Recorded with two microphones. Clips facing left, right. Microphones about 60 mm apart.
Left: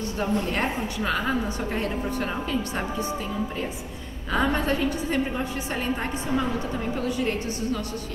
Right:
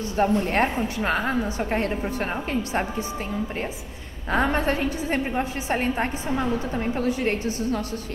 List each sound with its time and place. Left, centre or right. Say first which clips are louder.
0.2 s a woman's voice: right 5 dB; right
4.3 s a woman's voice: right 2 dB; right